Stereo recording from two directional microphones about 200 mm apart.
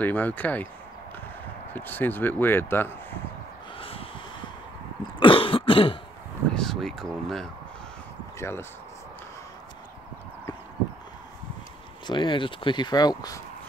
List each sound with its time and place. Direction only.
0.0 s speech: 10° left (ahead or behind)
1.7 s speech: 10° left (ahead or behind)
3.7 s a sound: 25° left (ahead or behind)
5.2 s cough: 25° left (ahead or behind)
6.5 s speech: centre (ahead or behind)
8.4 s speech: 10° left (ahead or behind)
12.1 s speech: 25° left (ahead or behind)